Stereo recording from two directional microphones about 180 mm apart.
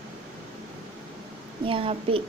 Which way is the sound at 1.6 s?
30° right (ahead or behind).